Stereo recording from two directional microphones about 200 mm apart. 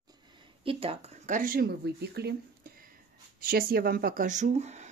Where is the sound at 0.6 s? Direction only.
30° right (ahead or behind); by 2.3 s 55° right (ahead or behind).